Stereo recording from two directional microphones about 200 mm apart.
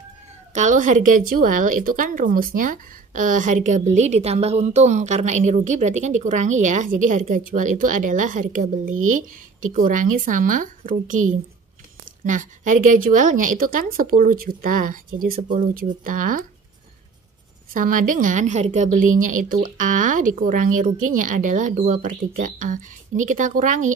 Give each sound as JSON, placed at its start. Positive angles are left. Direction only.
{"t": 0.6, "sound": "speech", "side_deg": -40}
{"t": 17.7, "sound": "speech", "side_deg": -40}